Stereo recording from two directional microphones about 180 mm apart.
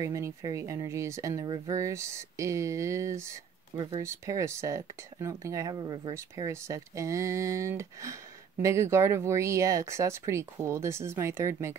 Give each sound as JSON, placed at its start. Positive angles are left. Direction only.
{"t": 0.0, "sound": "speech", "side_deg": -20}